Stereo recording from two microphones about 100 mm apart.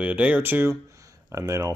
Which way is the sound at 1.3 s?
35° right (ahead or behind).